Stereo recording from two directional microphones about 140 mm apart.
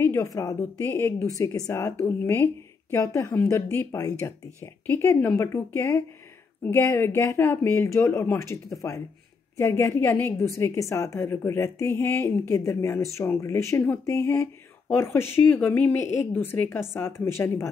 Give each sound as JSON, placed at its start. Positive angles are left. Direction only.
{"t": 0.0, "sound": "a woman's voice", "side_deg": 20}